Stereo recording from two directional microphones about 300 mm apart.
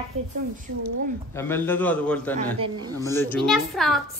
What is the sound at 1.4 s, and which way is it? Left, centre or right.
A man's voice, centre.